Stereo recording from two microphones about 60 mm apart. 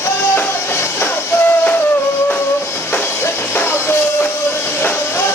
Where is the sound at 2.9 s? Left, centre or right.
Left.